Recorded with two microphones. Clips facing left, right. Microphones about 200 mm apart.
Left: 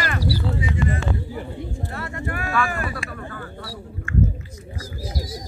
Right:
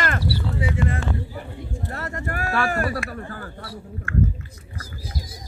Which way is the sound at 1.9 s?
40° right (ahead or behind).